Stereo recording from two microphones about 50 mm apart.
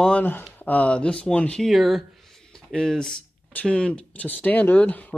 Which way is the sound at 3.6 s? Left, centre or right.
Left.